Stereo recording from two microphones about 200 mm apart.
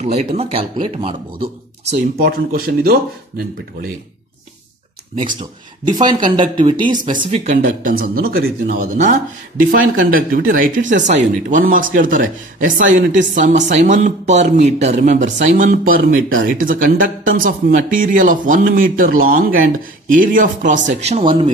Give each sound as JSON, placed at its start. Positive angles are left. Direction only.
{"t": 0.0, "sound": "speech", "side_deg": -35}
{"t": 2.2, "sound": "speech", "side_deg": -50}
{"t": 5.9, "sound": "speech", "side_deg": -20}
{"t": 7.2, "sound": "speech", "side_deg": -35}